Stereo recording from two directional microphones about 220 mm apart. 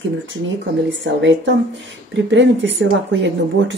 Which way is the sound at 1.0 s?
55° right (ahead or behind).